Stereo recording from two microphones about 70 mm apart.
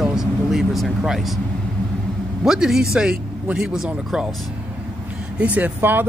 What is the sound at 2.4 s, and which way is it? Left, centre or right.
Speech, centre.